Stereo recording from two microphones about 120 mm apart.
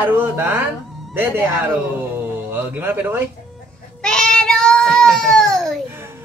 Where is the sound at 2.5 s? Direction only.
15° right (ahead or behind).